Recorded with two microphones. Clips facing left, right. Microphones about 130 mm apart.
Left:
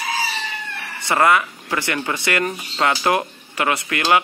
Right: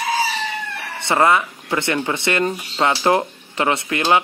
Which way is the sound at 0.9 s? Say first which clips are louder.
Right 1 dB; 25° right (ahead or behind).